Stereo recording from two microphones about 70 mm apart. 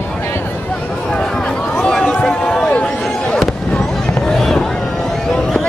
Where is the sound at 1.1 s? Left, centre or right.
Centre.